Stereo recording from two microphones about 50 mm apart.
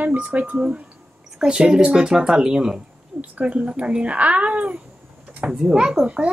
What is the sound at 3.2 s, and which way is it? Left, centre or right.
Speech, right.